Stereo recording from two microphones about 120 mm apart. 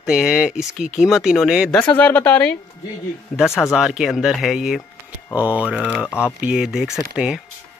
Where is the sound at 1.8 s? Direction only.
10° left (ahead or behind); by 5.9 s 10° right (ahead or behind).